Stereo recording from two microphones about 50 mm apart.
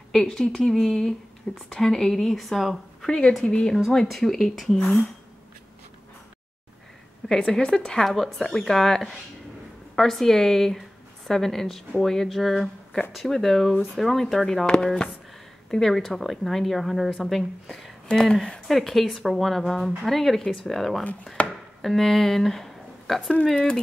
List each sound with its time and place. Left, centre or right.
0.1 s speech: centre
3.1 s a woman's voice: centre
3.7 s speech: centre
7.2 s speech: centre
21.0 s a woman's voice: left
21.5 s a sound: centre
23.5 s speech: centre